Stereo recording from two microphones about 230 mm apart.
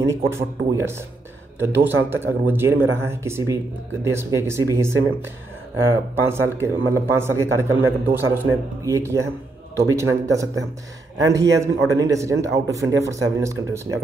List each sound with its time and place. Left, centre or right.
0.0 s speech: centre
6.2 s speech: centre